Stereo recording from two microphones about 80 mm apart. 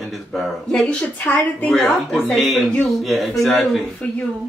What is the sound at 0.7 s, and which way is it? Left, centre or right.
Speech, centre.